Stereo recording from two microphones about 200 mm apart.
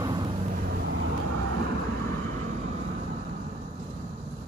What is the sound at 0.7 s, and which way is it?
Vehicle, 55° right (ahead or behind).